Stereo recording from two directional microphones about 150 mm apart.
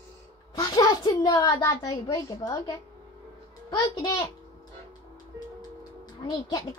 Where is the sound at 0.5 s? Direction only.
25° left (ahead or behind).